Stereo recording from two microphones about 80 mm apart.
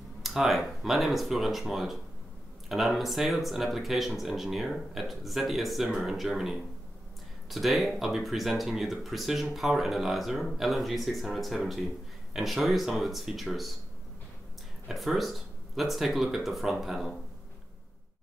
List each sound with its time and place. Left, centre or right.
0.2 s speech: centre
14.9 s speech: centre